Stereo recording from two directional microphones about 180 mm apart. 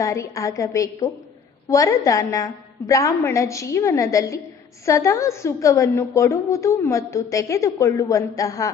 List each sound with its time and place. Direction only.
0.0 s a woman's voice: 15° left (ahead or behind)